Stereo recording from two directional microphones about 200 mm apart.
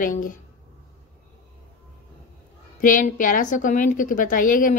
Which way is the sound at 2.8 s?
40° left (ahead or behind).